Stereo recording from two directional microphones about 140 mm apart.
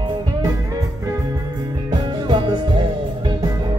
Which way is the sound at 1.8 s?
35° right (ahead or behind).